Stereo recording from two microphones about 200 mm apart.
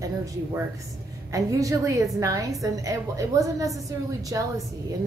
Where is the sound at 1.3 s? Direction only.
15° right (ahead or behind).